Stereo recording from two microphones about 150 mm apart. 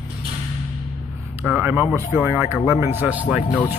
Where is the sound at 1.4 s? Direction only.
10° right (ahead or behind).